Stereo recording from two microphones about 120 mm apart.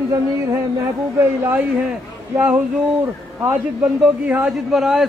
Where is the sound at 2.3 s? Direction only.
15° right (ahead or behind).